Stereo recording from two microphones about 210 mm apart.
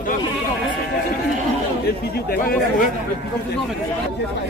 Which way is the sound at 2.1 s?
45° left (ahead or behind).